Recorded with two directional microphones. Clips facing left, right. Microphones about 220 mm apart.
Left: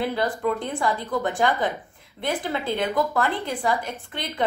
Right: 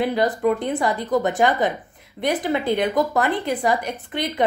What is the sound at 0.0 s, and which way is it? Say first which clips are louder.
A woman's voice: right 5 dB; 20° right (ahead or behind).